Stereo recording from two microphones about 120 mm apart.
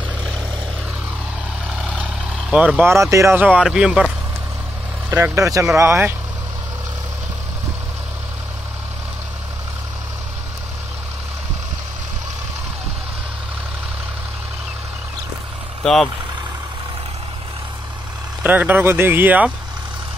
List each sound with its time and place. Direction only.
1.7 s vehicle: 10° right (ahead or behind)
2.8 s speech: 25° right (ahead or behind)
3.3 s speech: 10° right (ahead or behind)
5.1 s speech: 20° right (ahead or behind)
15.8 s speech: centre (ahead or behind)
18.4 s speech: 15° right (ahead or behind)